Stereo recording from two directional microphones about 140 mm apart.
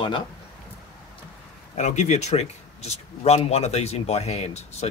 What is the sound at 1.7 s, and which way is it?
Speech, 55° left (ahead or behind).